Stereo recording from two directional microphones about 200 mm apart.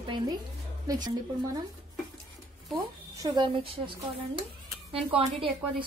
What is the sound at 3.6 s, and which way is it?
Speech, 25° right (ahead or behind).